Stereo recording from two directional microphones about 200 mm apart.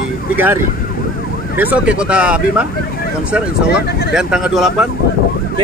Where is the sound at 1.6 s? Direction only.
5° right (ahead or behind).